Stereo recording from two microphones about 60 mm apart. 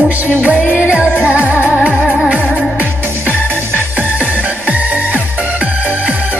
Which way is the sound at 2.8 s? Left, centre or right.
Right.